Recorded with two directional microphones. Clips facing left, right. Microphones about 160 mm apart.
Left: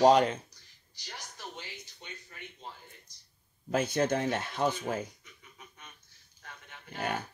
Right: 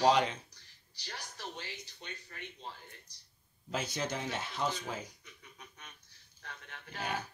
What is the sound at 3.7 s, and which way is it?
Speech, 55° left (ahead or behind).